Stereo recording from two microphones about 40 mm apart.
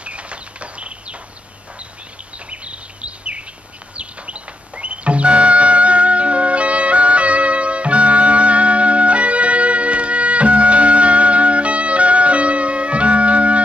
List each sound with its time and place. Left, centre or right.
0.0 s a sound: right
2.5 s bird: right
3.9 s music: right